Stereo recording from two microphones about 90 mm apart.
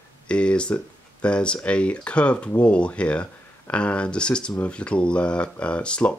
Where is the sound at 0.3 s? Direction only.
10° left (ahead or behind).